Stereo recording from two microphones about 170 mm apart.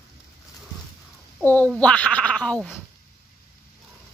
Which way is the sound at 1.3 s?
10° left (ahead or behind).